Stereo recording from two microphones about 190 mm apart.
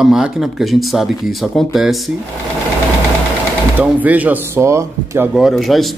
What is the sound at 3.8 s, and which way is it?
Speech, 10° right (ahead or behind).